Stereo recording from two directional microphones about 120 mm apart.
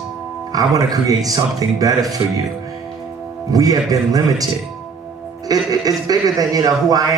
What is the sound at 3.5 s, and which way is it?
Speech, 30° right (ahead or behind).